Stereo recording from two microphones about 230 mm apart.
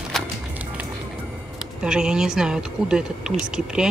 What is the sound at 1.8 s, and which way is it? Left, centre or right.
Speech, centre.